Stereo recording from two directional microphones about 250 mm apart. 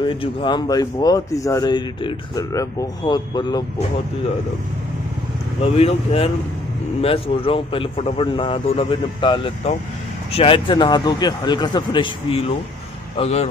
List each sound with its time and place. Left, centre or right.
0.0 s speech: centre
5.6 s a man's voice: left